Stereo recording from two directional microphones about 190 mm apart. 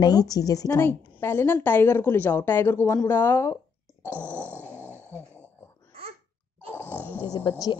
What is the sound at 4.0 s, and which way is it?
Grunt, 10° left (ahead or behind).